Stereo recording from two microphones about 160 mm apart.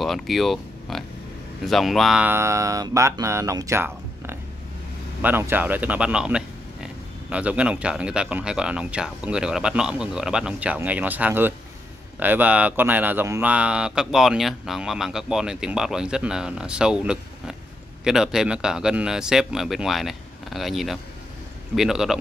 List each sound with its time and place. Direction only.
0.0 s speech: centre (ahead or behind)